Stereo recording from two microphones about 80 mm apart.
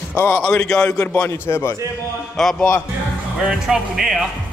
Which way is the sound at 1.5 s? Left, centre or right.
Left.